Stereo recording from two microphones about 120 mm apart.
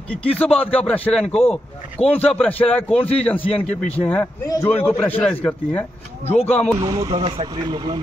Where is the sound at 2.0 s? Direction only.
60° left (ahead or behind).